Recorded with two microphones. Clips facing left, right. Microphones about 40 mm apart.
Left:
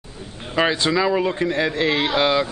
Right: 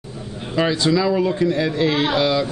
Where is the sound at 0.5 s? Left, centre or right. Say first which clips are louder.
Right 1 dB; left.